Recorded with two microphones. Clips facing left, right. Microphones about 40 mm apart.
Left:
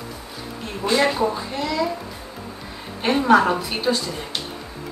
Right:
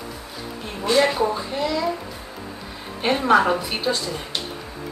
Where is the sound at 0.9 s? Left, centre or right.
Centre.